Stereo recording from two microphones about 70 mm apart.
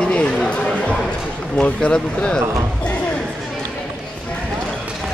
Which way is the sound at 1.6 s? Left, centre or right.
Centre.